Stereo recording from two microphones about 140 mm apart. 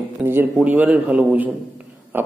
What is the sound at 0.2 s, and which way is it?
A man's voice, 15° right (ahead or behind).